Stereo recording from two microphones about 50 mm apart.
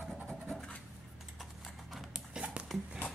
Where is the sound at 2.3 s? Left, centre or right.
Centre.